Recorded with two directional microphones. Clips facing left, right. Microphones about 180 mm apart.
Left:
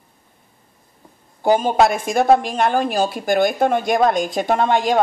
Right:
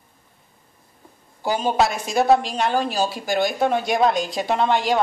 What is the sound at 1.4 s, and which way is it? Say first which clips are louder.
Speech: left 5 dB; 50° left (ahead or behind).